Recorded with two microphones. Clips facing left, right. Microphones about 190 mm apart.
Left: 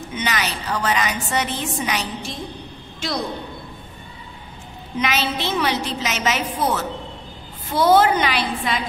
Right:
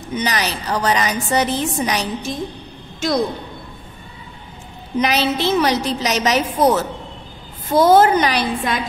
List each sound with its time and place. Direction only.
0.1 s a woman's voice: 40° right (ahead or behind)
4.9 s a woman's voice: 35° right (ahead or behind)